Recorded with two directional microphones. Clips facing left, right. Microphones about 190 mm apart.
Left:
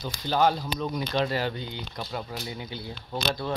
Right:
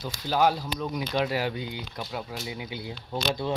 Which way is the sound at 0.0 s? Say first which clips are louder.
Even; 5° right (ahead or behind).